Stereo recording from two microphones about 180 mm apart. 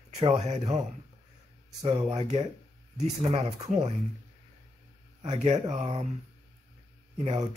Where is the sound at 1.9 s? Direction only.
30° right (ahead or behind).